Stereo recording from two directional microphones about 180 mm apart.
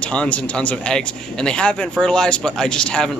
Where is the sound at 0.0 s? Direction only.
5° left (ahead or behind).